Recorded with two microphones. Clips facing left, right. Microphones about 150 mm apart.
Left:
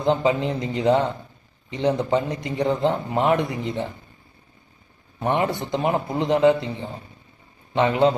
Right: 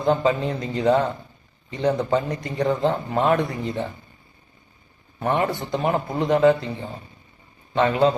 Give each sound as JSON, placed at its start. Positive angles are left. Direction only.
{"t": 0.0, "sound": "speech", "side_deg": 20}
{"t": 5.2, "sound": "speech", "side_deg": 20}